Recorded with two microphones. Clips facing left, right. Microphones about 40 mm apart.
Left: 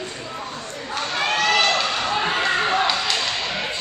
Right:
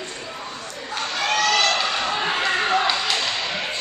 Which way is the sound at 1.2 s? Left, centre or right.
Left.